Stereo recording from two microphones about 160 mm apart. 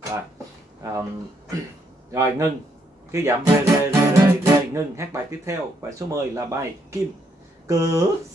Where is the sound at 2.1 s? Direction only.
20° right (ahead or behind).